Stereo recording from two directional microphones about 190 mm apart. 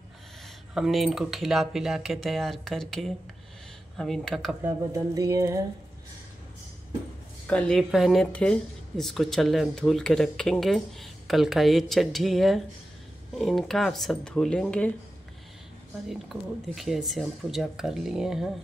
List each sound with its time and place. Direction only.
0.7 s speech: centre (ahead or behind)
4.6 s speech: 15° right (ahead or behind)
7.4 s speech: 5° left (ahead or behind)
16.1 s speech: centre (ahead or behind)